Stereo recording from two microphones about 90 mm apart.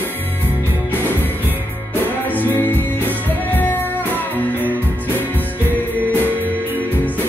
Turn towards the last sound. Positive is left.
turn(degrees=20)  # may be behind; listen again after turning